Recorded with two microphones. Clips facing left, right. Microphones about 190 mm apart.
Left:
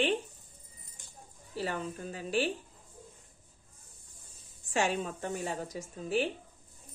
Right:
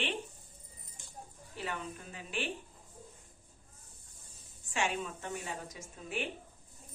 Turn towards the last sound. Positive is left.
turn(degrees=35)  # may be behind; listen again after turning